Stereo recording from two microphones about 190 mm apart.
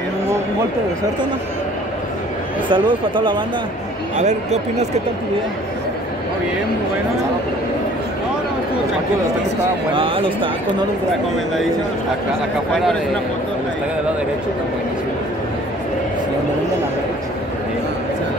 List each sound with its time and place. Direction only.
2.7 s speech: 25° right (ahead or behind)
4.2 s speech: 35° right (ahead or behind)
9.9 s speech: 30° right (ahead or behind)